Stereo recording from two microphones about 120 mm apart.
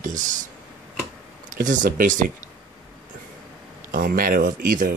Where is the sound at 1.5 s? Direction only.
90° right.